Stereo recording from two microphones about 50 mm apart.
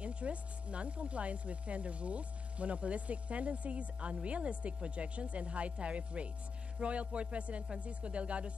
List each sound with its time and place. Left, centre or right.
0.0 s speech: right